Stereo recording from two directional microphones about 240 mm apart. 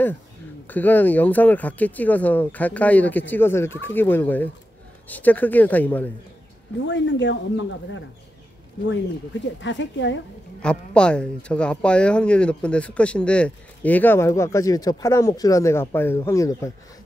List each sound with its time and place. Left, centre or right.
0.7 s speech: centre
6.9 s speech: left
9.6 s speech: left
10.6 s speech: centre